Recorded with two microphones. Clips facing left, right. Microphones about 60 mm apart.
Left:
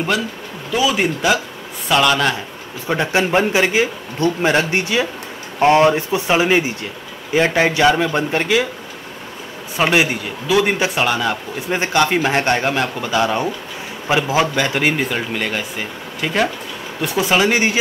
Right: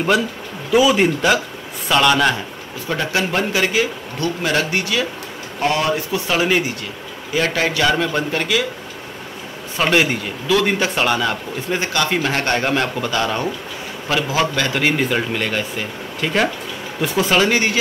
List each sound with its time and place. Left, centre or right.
0.7 s speech: centre
2.9 s a man's voice: left
9.8 s speech: centre
11.7 s a man's voice: left
12.5 s speech: centre
14.9 s speech: centre
17.0 s speech: centre
17.3 s a man's voice: centre